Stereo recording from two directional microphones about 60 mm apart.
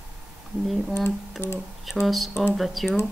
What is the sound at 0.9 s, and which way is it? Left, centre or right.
Speech, left.